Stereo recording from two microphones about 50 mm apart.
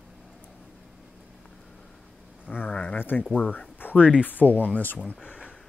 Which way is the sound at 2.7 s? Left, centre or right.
Left.